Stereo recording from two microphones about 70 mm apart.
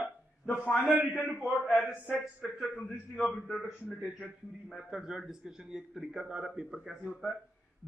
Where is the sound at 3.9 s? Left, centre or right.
Centre.